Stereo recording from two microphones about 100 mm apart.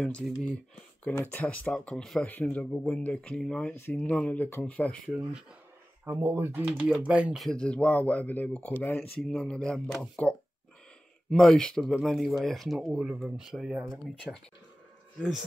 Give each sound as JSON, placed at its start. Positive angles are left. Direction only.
{"t": 0.0, "sound": "speech", "side_deg": 5}
{"t": 3.7, "sound": "speech", "side_deg": 20}
{"t": 6.0, "sound": "speech", "side_deg": -25}
{"t": 6.7, "sound": "speech", "side_deg": -5}
{"t": 7.0, "sound": "speech", "side_deg": -15}
{"t": 7.3, "sound": "speech", "side_deg": 5}
{"t": 9.2, "sound": "speech", "side_deg": 5}